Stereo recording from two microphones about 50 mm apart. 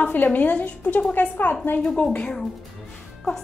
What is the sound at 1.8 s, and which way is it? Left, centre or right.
Speech, centre.